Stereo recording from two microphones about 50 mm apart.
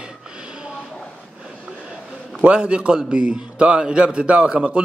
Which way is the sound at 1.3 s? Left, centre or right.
Centre.